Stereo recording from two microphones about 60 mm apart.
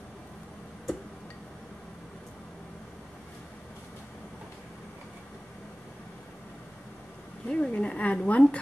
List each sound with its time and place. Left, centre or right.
7.4 s speech: centre